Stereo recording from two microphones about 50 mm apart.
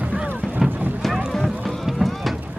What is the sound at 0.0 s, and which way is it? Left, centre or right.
Boat, right.